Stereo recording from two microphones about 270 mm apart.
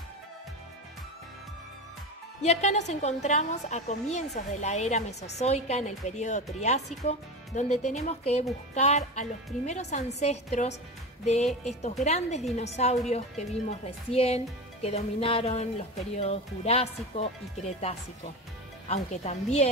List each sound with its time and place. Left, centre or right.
2.4 s a woman's voice: left
18.9 s a woman's voice: left